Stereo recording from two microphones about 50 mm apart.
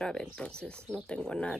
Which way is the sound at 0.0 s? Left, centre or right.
Centre.